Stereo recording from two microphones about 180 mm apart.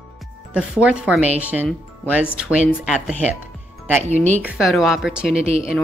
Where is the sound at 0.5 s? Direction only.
5° right (ahead or behind).